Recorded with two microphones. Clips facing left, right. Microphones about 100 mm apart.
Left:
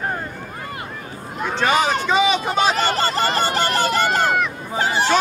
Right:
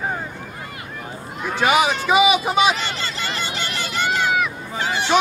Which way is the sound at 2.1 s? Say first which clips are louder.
Right 2 dB; 10° right (ahead or behind).